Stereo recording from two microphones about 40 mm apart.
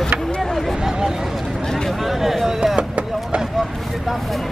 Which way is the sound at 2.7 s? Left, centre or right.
Right.